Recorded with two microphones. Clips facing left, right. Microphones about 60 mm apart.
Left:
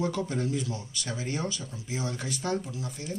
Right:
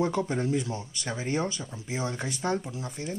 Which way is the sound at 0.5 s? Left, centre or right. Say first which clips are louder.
Right 3 dB; right.